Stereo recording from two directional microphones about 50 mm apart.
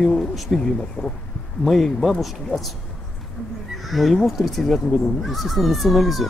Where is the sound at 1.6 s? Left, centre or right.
Centre.